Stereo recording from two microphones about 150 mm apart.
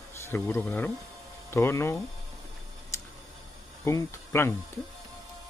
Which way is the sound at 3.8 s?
20° left (ahead or behind).